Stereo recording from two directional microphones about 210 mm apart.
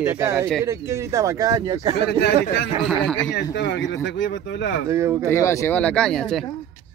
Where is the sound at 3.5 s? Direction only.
55° left (ahead or behind).